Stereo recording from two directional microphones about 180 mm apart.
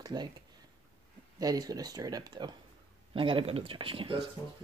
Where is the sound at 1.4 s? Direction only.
20° right (ahead or behind).